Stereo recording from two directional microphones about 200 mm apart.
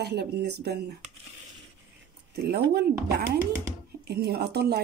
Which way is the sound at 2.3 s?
55° right (ahead or behind).